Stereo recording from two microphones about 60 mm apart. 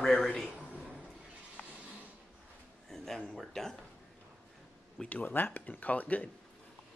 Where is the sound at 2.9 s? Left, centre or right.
Centre.